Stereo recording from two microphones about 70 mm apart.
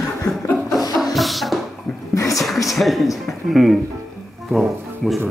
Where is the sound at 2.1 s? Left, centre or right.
Left.